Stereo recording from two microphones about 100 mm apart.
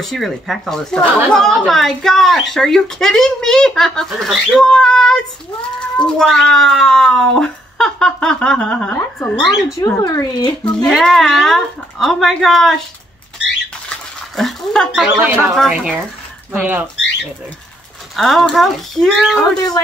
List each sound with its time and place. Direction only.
0.0 s speech: centre (ahead or behind)
4.6 s child singing: 5° left (ahead or behind)
5.8 s speech: 10° left (ahead or behind)
10.0 s speech: 40° left (ahead or behind)
10.6 s speech: 10° left (ahead or behind)
13.8 s a sound: 5° left (ahead or behind)
15.1 s speech: 20° right (ahead or behind)
15.5 s speech: centre (ahead or behind)
16.5 s speech: 15° right (ahead or behind)
18.1 s speech: centre (ahead or behind)